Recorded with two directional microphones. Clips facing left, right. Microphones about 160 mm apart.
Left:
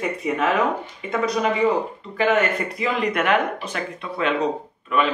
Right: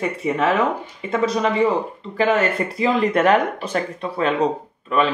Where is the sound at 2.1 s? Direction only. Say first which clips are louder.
Right 1 dB; 30° right (ahead or behind).